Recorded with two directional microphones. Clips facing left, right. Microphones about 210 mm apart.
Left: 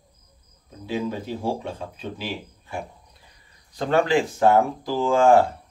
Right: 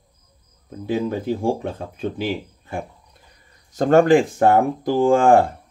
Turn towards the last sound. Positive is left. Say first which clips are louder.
# right 3 dB
turn(degrees=-55)  # may be behind; listen again after turning